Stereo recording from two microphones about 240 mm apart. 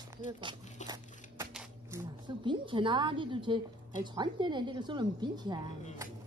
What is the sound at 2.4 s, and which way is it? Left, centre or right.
A woman's voice, centre.